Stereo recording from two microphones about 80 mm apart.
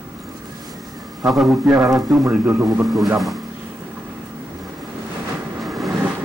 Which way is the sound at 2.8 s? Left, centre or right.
Centre.